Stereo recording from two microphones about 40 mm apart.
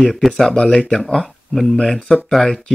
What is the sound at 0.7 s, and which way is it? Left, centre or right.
Speech, centre.